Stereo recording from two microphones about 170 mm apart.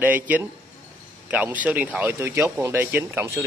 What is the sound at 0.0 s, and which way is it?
Speech, 10° right (ahead or behind).